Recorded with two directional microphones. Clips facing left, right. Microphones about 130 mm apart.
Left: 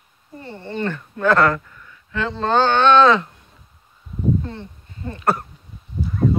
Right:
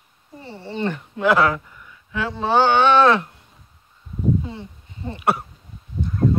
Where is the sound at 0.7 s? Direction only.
15° right (ahead or behind).